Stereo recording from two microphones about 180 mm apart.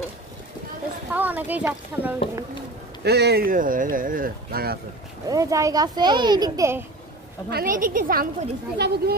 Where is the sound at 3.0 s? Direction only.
65° right (ahead or behind).